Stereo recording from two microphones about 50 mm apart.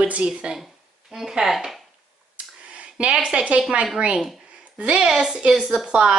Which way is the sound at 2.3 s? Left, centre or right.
Right.